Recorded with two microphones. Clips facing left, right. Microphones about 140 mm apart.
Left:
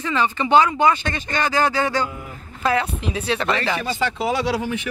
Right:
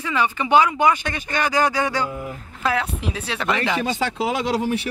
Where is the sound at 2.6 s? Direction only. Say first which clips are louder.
Left 2 dB; centre (ahead or behind).